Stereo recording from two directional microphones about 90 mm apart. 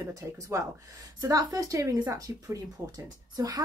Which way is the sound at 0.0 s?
40° right (ahead or behind).